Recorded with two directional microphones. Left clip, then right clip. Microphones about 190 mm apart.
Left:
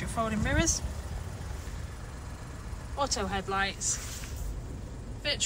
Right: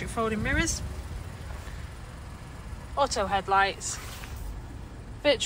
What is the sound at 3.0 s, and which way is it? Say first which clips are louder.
Speech: right 5 dB; 5° left (ahead or behind).